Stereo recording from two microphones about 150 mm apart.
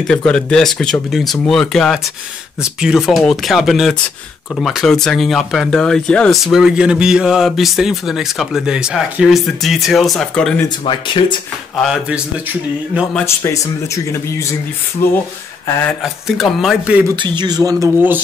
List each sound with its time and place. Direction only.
0.0 s speech: 5° left (ahead or behind)
10.9 s speech: 35° left (ahead or behind)
11.7 s speech: centre (ahead or behind)
13.2 s speech: 20° left (ahead or behind)
16.0 s speech: centre (ahead or behind)
17.1 s speech: 30° right (ahead or behind)